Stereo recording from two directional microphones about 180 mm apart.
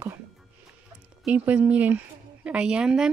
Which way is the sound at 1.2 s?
5° right (ahead or behind).